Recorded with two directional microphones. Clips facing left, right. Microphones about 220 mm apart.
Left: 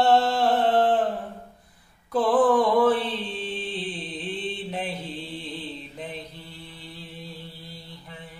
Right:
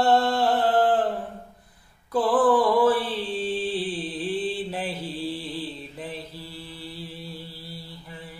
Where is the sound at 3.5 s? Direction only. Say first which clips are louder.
Right 6 dB; 35° right (ahead or behind).